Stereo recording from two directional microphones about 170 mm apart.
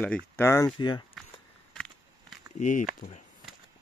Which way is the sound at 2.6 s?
50° left (ahead or behind).